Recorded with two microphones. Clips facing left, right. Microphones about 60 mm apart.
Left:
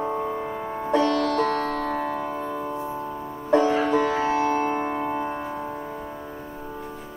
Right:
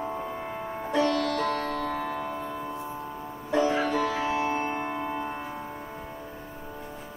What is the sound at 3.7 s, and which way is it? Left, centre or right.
Music, left.